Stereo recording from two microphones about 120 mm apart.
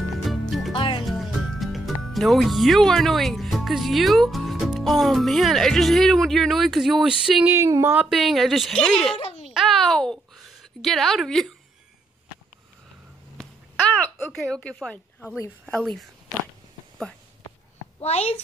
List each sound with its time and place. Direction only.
0.1 s music: centre (ahead or behind)
0.7 s music: 45° left (ahead or behind)
1.0 s speech: centre (ahead or behind)
7.5 s speech: 20° right (ahead or behind)
8.0 s a woman's voice: centre (ahead or behind)
9.2 s a sound: 55° left (ahead or behind)
9.5 s a sound: centre (ahead or behind)
13.4 s a sound: 5° left (ahead or behind)
15.6 s a woman's voice: 5° left (ahead or behind)
18.0 s a child's voice: 60° left (ahead or behind)